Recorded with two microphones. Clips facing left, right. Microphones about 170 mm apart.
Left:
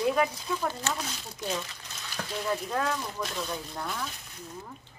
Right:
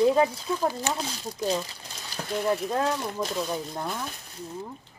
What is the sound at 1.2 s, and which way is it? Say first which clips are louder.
Speech: right 6 dB; 35° right (ahead or behind).